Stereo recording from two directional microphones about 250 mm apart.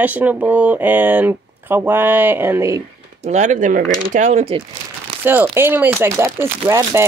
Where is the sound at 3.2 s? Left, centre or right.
Right.